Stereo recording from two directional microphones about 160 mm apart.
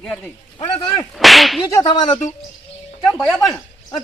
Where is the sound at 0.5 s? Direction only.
35° left (ahead or behind).